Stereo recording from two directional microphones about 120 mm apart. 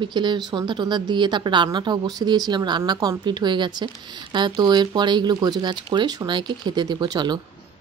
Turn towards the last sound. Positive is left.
turn(degrees=-35)  # may be behind; listen again after turning